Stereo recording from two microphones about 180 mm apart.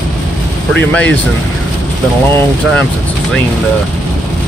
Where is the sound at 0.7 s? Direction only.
5° left (ahead or behind).